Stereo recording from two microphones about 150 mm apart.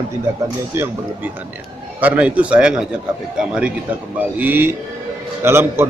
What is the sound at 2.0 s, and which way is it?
A man's voice, 10° right (ahead or behind).